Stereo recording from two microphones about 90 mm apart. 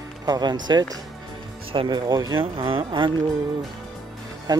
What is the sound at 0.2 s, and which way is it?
Speech, 50° right (ahead or behind).